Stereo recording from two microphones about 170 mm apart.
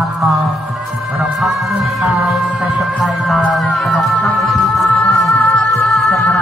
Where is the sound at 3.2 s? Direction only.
Centre (ahead or behind).